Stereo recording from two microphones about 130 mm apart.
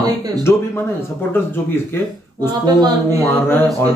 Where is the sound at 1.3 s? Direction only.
15° left (ahead or behind).